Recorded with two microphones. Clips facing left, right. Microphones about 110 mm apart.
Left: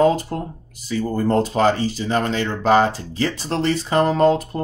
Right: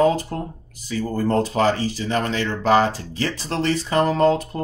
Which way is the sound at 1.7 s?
25° left (ahead or behind).